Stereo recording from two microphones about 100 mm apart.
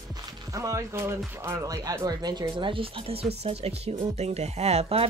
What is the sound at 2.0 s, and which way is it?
Speech, 45° right (ahead or behind).